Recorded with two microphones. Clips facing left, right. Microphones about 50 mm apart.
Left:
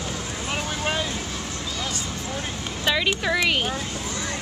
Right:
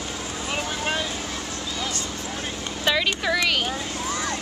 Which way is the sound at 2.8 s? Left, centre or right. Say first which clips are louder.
Even; centre.